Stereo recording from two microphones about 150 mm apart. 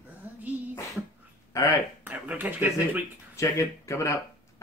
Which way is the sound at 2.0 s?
10° right (ahead or behind).